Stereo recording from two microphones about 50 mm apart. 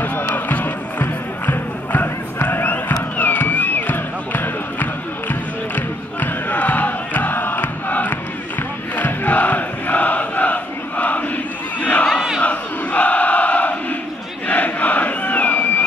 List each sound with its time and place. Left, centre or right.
0.5 s music: left
2.4 s a sound: left
5.3 s crowd: left
11.8 s battle cry: left
14.5 s crowd: left